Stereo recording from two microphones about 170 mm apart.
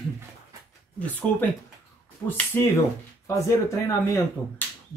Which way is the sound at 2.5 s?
10° left (ahead or behind).